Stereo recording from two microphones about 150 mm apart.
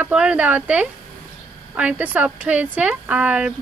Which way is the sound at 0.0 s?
5° right (ahead or behind).